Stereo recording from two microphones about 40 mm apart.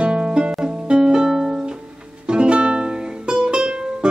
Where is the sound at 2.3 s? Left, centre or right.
Right.